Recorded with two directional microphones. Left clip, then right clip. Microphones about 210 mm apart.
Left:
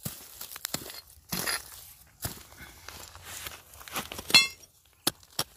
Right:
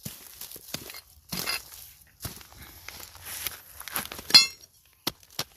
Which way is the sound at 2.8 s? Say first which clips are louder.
Right 3 dB; 20° right (ahead or behind).